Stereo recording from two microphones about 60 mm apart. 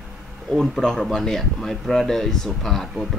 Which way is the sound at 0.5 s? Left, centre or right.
Centre.